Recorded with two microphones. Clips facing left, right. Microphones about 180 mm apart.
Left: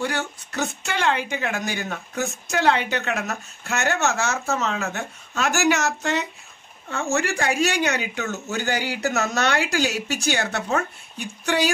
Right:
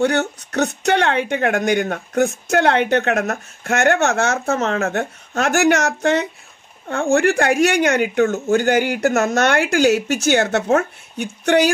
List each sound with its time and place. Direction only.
0.0 s speech: 70° right (ahead or behind)